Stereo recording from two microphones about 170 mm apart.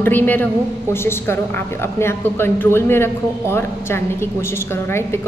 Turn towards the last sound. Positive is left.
turn(degrees=15)  # may be behind; listen again after turning